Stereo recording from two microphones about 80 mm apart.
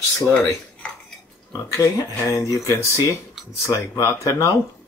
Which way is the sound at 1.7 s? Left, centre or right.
Left.